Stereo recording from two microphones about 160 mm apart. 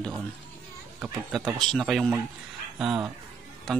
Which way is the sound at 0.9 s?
5° right (ahead or behind).